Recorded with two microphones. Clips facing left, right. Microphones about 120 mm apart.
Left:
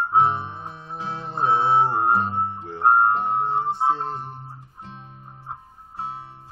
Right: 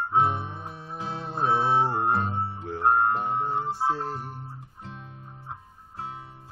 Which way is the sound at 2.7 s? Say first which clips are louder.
Left 4 dB; 35° left (ahead or behind).